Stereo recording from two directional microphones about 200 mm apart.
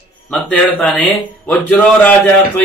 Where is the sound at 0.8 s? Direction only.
5° left (ahead or behind).